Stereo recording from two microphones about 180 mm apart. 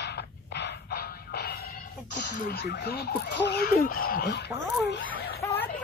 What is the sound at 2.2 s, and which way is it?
Speech, 65° left (ahead or behind).